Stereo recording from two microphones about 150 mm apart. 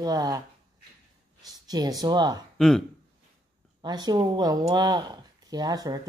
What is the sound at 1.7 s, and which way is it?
Speech, 25° right (ahead or behind).